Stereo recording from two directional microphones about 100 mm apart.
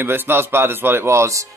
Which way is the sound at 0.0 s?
20° right (ahead or behind).